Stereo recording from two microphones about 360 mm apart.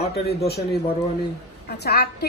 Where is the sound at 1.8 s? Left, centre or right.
Left.